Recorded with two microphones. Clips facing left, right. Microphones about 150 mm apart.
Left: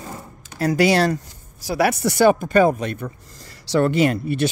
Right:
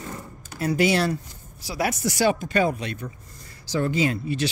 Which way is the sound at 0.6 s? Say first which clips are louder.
Left 4 dB; 85° left.